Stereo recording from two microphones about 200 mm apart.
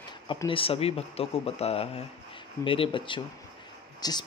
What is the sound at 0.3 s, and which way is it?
Speech, 25° left (ahead or behind).